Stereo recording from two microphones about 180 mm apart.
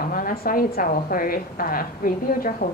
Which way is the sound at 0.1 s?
55° left (ahead or behind).